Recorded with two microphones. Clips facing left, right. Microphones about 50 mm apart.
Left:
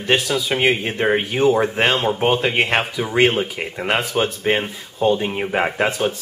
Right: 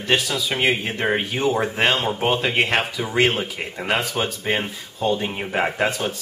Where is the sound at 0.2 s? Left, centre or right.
Centre.